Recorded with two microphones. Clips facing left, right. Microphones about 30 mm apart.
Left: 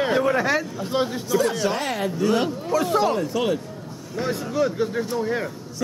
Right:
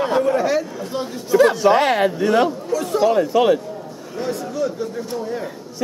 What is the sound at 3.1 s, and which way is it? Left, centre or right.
Speech, centre.